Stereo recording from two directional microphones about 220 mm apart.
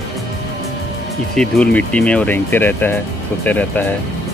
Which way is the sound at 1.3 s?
5° left (ahead or behind).